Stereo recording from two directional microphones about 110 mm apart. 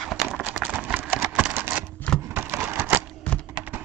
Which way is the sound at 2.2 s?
20° right (ahead or behind).